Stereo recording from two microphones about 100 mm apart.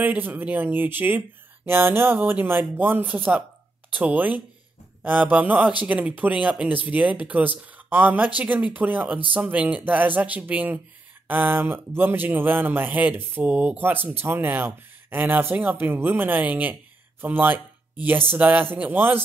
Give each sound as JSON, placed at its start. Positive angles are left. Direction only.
{"t": 0.0, "sound": "speech", "side_deg": -15}